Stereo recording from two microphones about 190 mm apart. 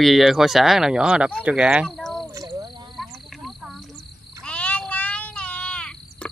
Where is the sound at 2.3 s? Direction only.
15° right (ahead or behind).